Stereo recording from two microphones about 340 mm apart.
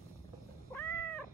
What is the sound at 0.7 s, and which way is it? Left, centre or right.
Cat, centre.